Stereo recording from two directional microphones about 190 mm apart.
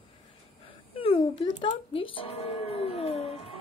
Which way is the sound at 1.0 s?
30° left (ahead or behind).